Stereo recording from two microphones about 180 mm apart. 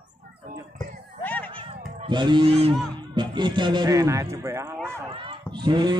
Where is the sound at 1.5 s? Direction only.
25° right (ahead or behind).